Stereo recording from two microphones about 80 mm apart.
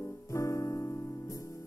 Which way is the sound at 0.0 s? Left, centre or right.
Left.